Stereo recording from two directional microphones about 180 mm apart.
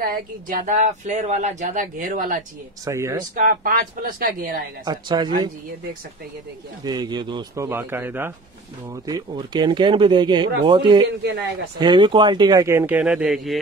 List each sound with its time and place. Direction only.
0.0 s speech: 50° right (ahead or behind)
2.8 s speech: 15° right (ahead or behind)
3.3 s speech: 50° right (ahead or behind)
4.8 s speech: 25° right (ahead or behind)
6.8 s speech: 20° right (ahead or behind)
9.0 s speech: 20° right (ahead or behind); by 13.6 s centre (ahead or behind)